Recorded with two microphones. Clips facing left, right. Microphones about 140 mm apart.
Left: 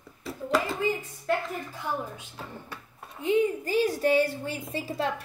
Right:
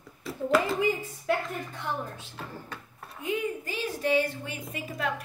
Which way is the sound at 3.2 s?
35° left (ahead or behind).